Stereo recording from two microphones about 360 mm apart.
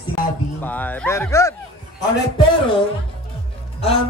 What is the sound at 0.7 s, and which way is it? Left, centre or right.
Bow-wow, centre.